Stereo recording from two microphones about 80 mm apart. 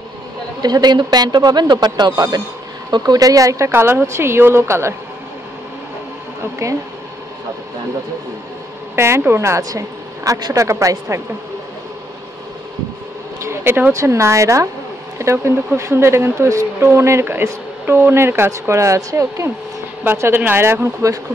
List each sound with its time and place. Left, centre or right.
0.6 s speech: right
8.9 s speech: right
13.4 s a sound: right
13.9 s speech: right
20.0 s speech: right